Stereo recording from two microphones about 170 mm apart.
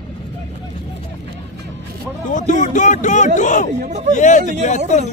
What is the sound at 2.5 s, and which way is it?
Speech, 45° left (ahead or behind).